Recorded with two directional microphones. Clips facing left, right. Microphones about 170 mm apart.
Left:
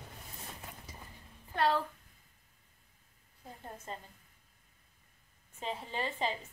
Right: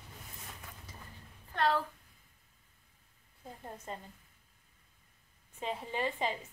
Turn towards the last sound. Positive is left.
turn(degrees=-15)  # may be behind; listen again after turning